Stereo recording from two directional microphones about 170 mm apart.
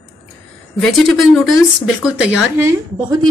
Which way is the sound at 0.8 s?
Centre (ahead or behind).